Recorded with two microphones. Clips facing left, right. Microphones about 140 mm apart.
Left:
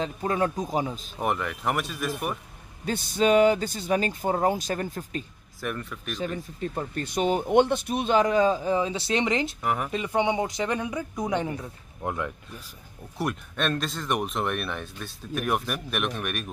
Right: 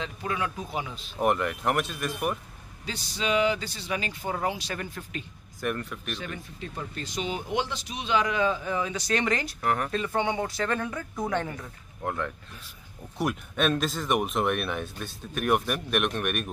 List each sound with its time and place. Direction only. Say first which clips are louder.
0.0 s a man's voice: left 5 dB; 40° left (ahead or behind)
1.2 s speech: right 2 dB; centre (ahead or behind)
2.8 s a man's voice: left 9 dB; 55° left (ahead or behind)
5.6 s speech: right 2 dB; centre (ahead or behind)
6.1 s a man's voice: left 6 dB; 40° left (ahead or behind); by 9.6 s 20° left (ahead or behind)
9.6 s speech: even; 5° left (ahead or behind)
13.2 s speech: right 2 dB; centre (ahead or behind)